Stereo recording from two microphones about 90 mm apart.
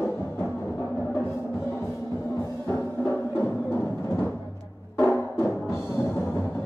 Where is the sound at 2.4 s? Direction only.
30° left (ahead or behind).